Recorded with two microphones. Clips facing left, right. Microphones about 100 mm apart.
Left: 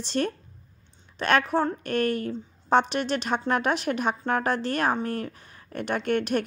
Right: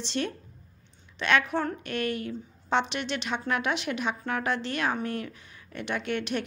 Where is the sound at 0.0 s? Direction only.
45° left (ahead or behind).